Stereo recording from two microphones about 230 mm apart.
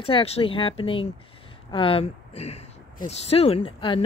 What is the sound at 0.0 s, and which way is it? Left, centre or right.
Speech, left.